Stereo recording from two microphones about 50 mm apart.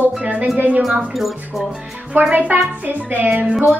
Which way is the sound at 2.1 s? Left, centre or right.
Right.